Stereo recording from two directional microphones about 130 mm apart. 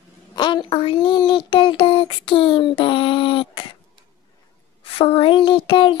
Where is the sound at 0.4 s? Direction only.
35° left (ahead or behind).